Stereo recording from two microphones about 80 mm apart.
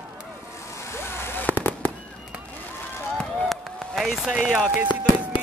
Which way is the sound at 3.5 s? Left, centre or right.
Centre.